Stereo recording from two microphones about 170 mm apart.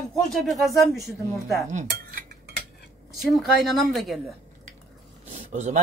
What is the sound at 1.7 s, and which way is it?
Cutlery, 45° right (ahead or behind).